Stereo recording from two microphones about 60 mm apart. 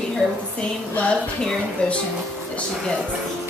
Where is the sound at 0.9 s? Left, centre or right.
Left.